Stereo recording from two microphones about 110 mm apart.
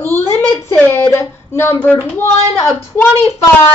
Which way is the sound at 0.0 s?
20° left (ahead or behind).